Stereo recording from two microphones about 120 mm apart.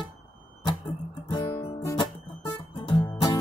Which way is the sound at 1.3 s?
40° left (ahead or behind).